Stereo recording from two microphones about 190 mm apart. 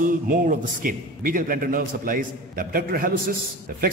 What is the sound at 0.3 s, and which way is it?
A man's voice, 45° right (ahead or behind).